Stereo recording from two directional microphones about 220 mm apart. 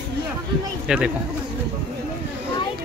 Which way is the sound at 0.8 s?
5° right (ahead or behind).